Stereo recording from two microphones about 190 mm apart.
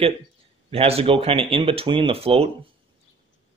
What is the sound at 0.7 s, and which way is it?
Speech, 30° right (ahead or behind).